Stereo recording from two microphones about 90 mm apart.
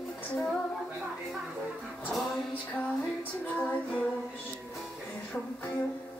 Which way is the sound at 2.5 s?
15° left (ahead or behind).